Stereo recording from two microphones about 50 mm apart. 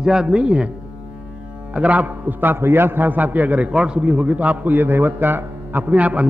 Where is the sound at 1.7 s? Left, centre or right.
Right.